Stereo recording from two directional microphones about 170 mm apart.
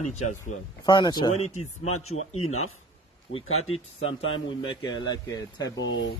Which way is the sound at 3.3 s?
35° left (ahead or behind).